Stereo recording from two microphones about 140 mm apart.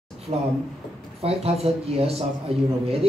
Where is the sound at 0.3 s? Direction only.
50° right (ahead or behind).